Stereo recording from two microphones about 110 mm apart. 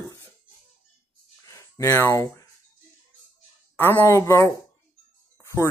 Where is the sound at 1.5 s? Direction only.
30° left (ahead or behind).